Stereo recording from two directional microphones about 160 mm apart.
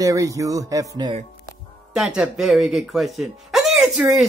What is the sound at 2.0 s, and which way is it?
Speech, 5° right (ahead or behind).